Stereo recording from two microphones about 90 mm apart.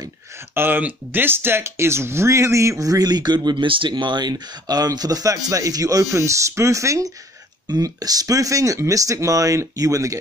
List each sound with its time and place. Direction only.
0.6 s speech: 20° right (ahead or behind)
7.6 s speech: 45° right (ahead or behind)